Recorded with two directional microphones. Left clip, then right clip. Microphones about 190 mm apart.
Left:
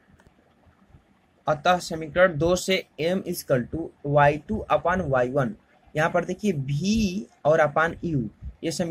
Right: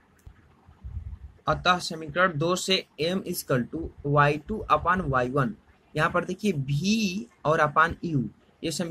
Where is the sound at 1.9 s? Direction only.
5° left (ahead or behind).